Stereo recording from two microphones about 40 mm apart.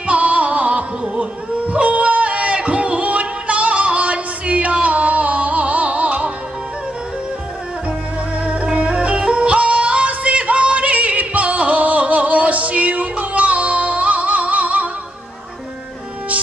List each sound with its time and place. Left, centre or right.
0.0 s music: right
1.7 s a sound: right
8.7 s music: right